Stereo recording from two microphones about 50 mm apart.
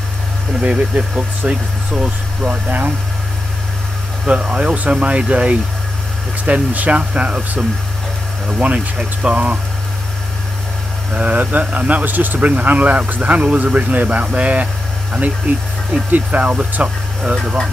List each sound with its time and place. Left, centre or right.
0.6 s speech: right
4.3 s speech: right
8.5 s speech: right
11.1 s speech: right